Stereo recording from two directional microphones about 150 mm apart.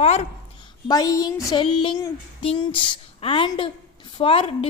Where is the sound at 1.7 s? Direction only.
40° left (ahead or behind).